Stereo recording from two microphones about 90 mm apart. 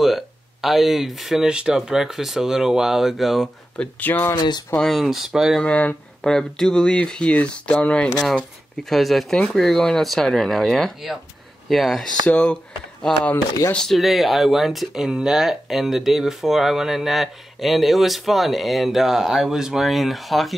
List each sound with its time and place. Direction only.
0.0 s speech: centre (ahead or behind)
3.7 s speech: 15° left (ahead or behind)
4.4 s speech: 50° left (ahead or behind)
4.7 s speech: centre (ahead or behind)
5.6 s speech: 15° left (ahead or behind)
8.8 s speech: centre (ahead or behind)
12.3 s speech: 10° left (ahead or behind)
13.7 s speech: centre (ahead or behind)